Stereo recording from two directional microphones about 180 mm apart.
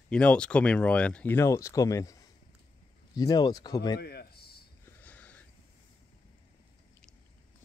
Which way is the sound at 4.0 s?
60° left (ahead or behind).